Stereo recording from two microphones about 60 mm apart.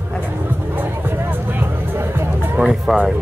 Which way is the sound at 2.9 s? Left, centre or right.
Right.